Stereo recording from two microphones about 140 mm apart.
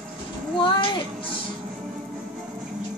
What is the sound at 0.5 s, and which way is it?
Speech, 35° left (ahead or behind).